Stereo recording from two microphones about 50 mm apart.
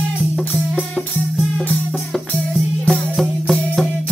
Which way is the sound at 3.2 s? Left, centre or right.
Centre.